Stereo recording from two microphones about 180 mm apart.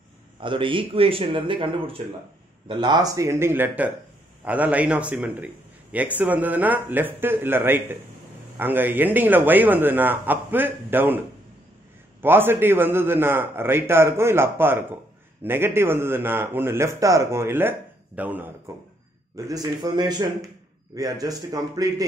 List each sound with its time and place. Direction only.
0.4 s a man's voice: 30° right (ahead or behind); by 18.5 s 10° right (ahead or behind)
19.3 s speech: 20° right (ahead or behind)